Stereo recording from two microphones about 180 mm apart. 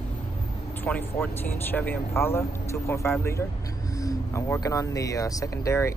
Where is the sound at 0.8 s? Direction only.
10° left (ahead or behind).